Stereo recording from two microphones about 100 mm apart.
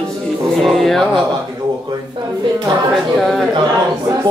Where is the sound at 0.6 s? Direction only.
5° left (ahead or behind).